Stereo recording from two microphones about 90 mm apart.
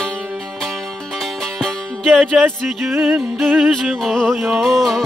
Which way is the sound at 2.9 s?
25° right (ahead or behind).